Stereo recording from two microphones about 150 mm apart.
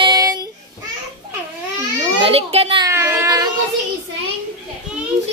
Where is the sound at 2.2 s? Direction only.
40° right (ahead or behind).